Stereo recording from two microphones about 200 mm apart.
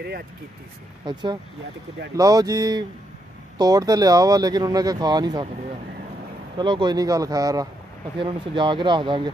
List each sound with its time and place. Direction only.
1.0 s speech: 20° right (ahead or behind)
6.6 s speech: 25° right (ahead or behind)